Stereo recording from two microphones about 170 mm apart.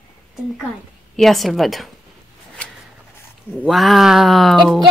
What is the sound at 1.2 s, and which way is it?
Speech, centre (ahead or behind).